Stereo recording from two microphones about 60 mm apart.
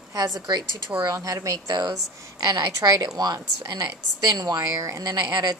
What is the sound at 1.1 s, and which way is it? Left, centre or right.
Speech, right.